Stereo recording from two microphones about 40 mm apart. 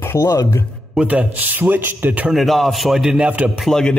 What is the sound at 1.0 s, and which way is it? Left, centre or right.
Speech, centre.